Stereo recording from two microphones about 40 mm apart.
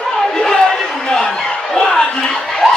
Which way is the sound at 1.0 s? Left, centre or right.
Centre.